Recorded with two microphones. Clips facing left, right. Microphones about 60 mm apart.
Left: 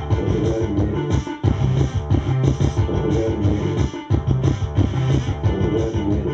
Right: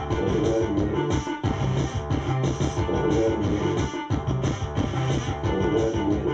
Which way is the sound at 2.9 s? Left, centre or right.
Centre.